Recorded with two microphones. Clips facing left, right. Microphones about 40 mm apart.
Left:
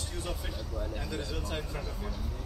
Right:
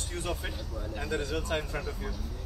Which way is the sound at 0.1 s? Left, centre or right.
Right.